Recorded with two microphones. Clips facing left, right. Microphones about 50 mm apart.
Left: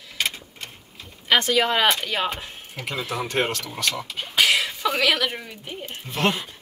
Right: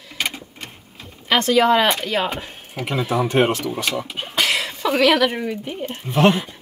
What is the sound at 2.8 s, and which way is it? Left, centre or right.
Speech, centre.